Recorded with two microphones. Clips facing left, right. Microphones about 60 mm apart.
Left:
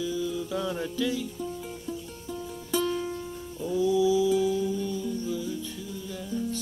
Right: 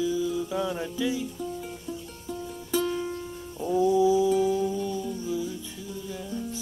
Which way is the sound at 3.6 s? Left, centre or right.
Right.